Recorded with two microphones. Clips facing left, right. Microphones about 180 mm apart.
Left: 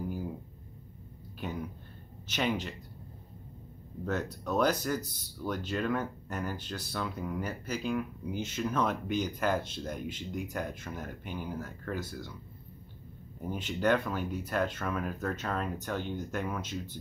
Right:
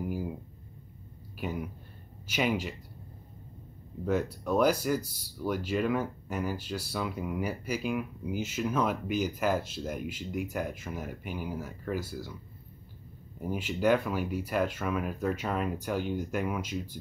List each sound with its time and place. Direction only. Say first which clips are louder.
1.4 s speech: right 2 dB; 10° right (ahead or behind)
4.0 s speech: right 4 dB; 10° right (ahead or behind)
13.4 s speech: right 2 dB; 10° right (ahead or behind)